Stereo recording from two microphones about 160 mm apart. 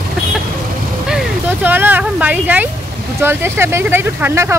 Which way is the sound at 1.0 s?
5° right (ahead or behind).